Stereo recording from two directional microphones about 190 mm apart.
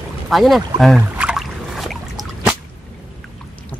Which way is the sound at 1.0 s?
5° right (ahead or behind).